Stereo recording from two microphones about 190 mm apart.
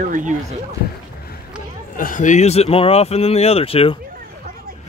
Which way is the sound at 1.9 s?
45° left (ahead or behind).